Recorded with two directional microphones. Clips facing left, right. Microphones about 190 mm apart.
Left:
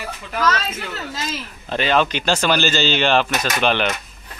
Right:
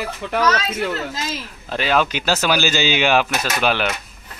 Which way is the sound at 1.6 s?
5° right (ahead or behind).